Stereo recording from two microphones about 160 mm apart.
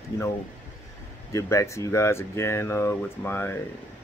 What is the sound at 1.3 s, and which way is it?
Speech, 20° left (ahead or behind).